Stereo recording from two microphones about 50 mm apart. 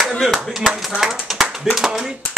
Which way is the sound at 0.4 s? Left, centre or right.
Centre.